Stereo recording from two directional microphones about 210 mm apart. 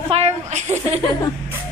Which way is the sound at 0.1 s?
30° right (ahead or behind).